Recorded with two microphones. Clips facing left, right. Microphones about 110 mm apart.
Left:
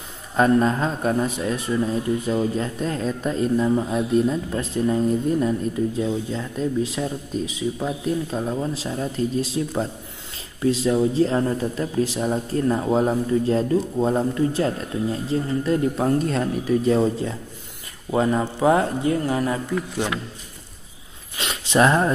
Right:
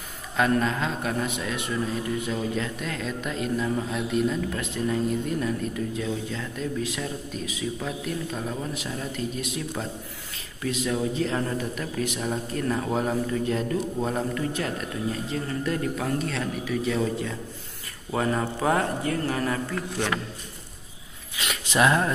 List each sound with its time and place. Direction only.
0.4 s speech: 35° left (ahead or behind)
18.1 s speech: 20° left (ahead or behind)
21.4 s a sound: 30° left (ahead or behind)